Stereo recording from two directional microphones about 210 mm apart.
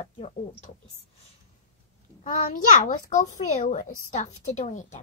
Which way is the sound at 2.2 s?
35° left (ahead or behind).